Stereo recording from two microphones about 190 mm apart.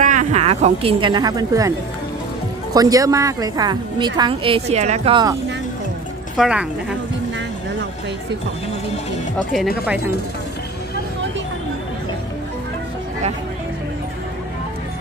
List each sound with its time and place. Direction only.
0.0 s speech: 40° right (ahead or behind); by 1.7 s 20° right (ahead or behind)
2.7 s a woman's voice: 20° right (ahead or behind); by 5.2 s 35° right (ahead or behind)
6.3 s a woman's voice: 5° right (ahead or behind)